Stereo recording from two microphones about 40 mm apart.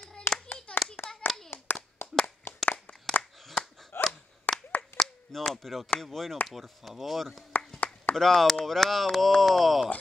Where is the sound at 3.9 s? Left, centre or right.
Left.